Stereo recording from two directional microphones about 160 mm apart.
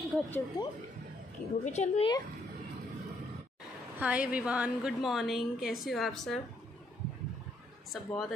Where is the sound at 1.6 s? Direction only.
45° left (ahead or behind).